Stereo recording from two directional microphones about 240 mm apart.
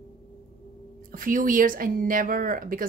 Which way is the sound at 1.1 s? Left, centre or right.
Right.